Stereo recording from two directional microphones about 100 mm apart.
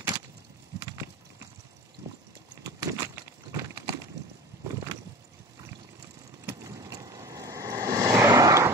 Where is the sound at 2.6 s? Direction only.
30° right (ahead or behind).